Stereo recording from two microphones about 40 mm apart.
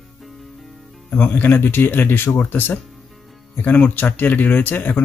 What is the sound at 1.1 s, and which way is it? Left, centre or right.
Speech, left.